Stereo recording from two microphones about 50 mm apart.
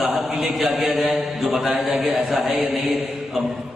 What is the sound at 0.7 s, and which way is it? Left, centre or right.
A man's voice, right.